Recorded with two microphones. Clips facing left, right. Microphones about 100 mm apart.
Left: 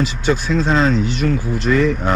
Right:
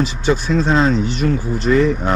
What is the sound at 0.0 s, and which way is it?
Speech, 40° right (ahead or behind).